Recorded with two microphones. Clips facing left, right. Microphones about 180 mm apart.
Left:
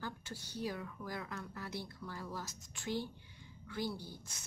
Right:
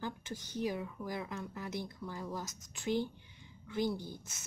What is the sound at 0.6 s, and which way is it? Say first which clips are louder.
Speech: right 4 dB; 15° right (ahead or behind).